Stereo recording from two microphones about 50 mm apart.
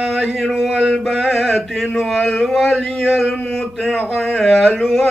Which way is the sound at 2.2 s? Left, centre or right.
Centre.